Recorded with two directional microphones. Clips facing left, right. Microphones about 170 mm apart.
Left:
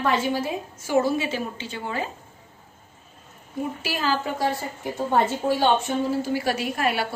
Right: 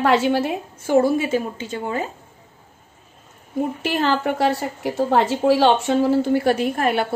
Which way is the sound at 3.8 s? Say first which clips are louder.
Right 5 dB; 60° right (ahead or behind).